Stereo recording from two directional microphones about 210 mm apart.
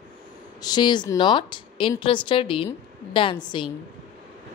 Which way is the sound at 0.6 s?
20° left (ahead or behind).